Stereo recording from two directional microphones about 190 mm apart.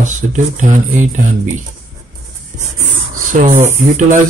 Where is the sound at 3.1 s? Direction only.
45° right (ahead or behind).